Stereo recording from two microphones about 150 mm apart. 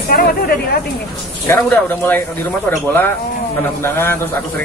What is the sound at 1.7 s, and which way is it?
Speech, 10° left (ahead or behind).